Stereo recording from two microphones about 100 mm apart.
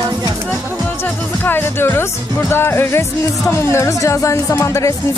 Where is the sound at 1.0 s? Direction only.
20° left (ahead or behind).